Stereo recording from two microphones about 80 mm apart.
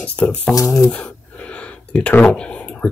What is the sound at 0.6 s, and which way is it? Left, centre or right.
Speech, left.